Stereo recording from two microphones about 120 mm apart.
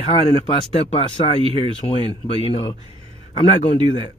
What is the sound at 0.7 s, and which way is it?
Speech, 55° left (ahead or behind).